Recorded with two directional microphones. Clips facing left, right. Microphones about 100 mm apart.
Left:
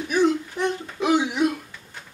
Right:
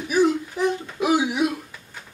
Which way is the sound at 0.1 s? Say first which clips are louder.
Right 1 dB; 5° right (ahead or behind).